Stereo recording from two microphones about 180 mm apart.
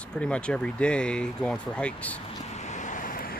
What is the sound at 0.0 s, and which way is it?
Speech, 5° left (ahead or behind).